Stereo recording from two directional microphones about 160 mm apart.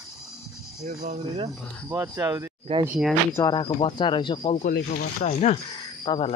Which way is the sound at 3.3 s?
25° left (ahead or behind).